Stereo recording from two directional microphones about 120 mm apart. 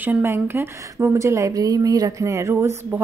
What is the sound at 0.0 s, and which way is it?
A woman's voice, 20° right (ahead or behind).